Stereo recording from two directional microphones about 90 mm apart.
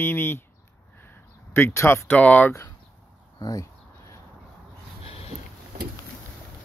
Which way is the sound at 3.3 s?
45° left (ahead or behind).